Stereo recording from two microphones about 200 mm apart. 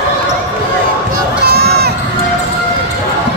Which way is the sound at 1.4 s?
50° right (ahead or behind).